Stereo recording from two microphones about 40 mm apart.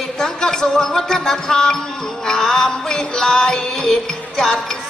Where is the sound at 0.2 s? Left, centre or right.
Centre.